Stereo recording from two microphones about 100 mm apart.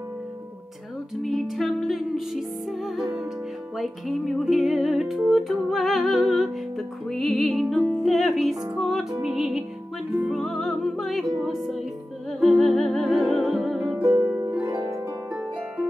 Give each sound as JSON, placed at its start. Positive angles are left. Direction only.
{"t": 1.2, "sound": "music", "side_deg": 0}
{"t": 14.5, "sound": "harp", "side_deg": -15}